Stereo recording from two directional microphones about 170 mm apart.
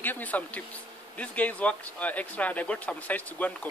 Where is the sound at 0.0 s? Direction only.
10° left (ahead or behind).